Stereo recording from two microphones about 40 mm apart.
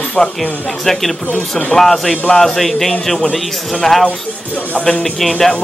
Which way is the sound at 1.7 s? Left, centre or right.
Centre.